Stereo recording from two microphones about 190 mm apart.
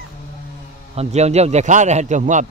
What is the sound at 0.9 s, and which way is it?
A man's voice, 35° right (ahead or behind).